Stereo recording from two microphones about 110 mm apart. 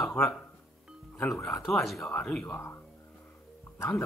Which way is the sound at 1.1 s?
25° left (ahead or behind).